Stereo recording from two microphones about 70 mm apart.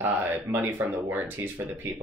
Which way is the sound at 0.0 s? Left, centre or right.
Right.